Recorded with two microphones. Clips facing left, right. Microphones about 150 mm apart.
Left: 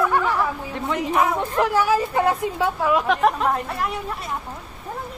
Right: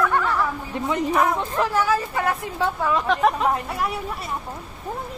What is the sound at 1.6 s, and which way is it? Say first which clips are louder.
Speech: left 3 dB; 15° left (ahead or behind).